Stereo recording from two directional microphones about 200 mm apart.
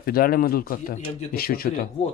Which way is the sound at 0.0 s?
45° left (ahead or behind).